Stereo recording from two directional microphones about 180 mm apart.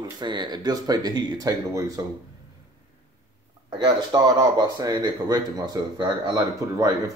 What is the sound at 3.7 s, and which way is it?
Speech, 25° right (ahead or behind).